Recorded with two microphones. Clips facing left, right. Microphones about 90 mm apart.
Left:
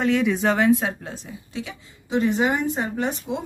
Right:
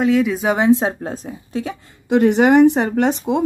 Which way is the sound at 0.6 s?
25° right (ahead or behind).